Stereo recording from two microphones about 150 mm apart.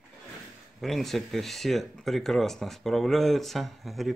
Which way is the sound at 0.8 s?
Centre (ahead or behind).